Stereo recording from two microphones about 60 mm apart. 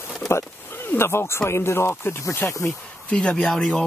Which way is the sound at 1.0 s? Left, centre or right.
Left.